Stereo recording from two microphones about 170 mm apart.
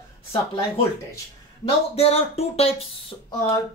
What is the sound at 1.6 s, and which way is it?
Speech, 35° left (ahead or behind).